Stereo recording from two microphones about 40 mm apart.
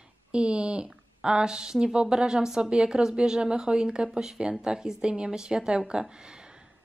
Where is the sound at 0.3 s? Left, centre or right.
Right.